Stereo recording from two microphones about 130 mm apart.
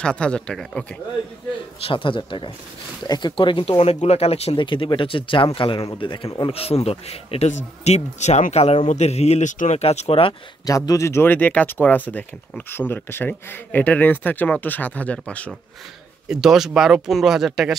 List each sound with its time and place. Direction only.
0.0 s speech: 5° left (ahead or behind)
1.8 s speech: 45° left (ahead or behind)
4.6 s speech: 40° left (ahead or behind); by 9.8 s 70° left (ahead or behind)
9.8 s speech: 50° left (ahead or behind)
10.6 s speech: 25° left (ahead or behind); by 15.5 s 10° left (ahead or behind)
16.3 s speech: 5° right (ahead or behind)